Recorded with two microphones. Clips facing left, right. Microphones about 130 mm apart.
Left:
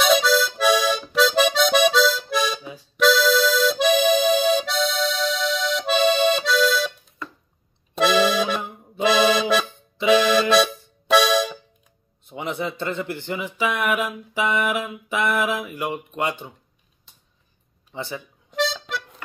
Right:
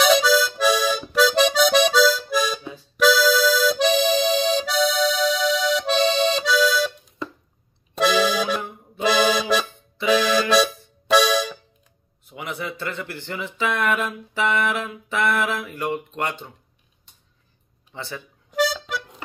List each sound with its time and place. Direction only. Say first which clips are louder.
0.0 s music: right 1 dB; centre (ahead or behind)
1.1 s accordion: right 1 dB; centre (ahead or behind)
7.9 s accordion: left 1 dB; centre (ahead or behind)
10.5 s music: left 1 dB; centre (ahead or behind)
12.3 s speech: left 3 dB; 25° left (ahead or behind)
17.9 s speech: left 3 dB; 15° left (ahead or behind)
18.5 s harmonica: right 2 dB; centre (ahead or behind)